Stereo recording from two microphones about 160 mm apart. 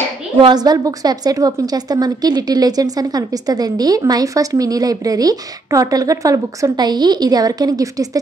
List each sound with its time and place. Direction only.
0.4 s a woman's voice: 25° right (ahead or behind)